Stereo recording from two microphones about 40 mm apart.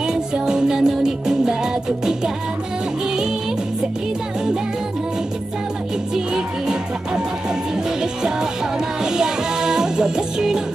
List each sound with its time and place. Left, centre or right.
0.0 s music: centre
6.1 s music: centre
8.0 s music: centre